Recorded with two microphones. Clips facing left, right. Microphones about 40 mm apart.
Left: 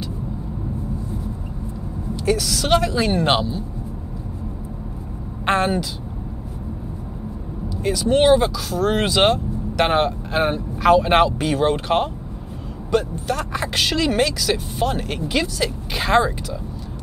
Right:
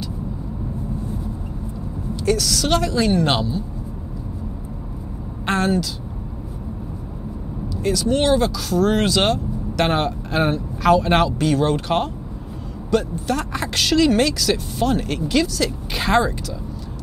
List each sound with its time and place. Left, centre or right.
2.1 s speech: centre
5.4 s speech: centre
7.8 s speech: centre
15.9 s speech: centre